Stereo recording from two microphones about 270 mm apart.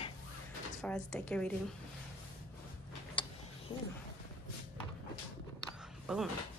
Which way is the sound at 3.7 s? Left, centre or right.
Centre.